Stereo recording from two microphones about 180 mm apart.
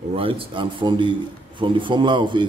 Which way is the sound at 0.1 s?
30° right (ahead or behind).